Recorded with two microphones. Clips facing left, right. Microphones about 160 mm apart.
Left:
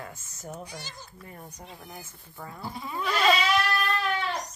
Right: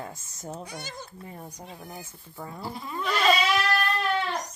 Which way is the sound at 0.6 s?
55° right (ahead or behind).